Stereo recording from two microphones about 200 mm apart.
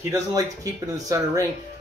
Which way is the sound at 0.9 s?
15° right (ahead or behind).